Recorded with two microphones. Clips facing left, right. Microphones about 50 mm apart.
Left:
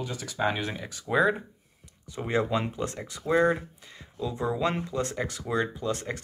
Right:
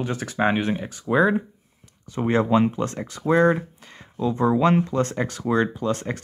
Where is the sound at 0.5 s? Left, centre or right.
Right.